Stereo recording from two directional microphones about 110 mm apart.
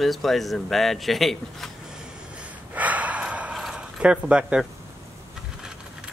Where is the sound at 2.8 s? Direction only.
15° right (ahead or behind).